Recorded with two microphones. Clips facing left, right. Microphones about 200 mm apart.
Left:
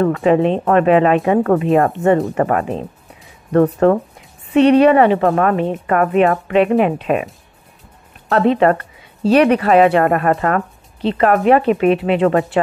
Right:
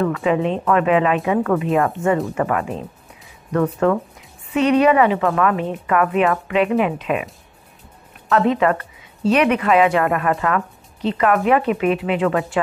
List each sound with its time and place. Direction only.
0.0 s a woman's voice: 40° left (ahead or behind)
8.3 s a woman's voice: 35° left (ahead or behind)
11.0 s a woman's voice: 30° left (ahead or behind)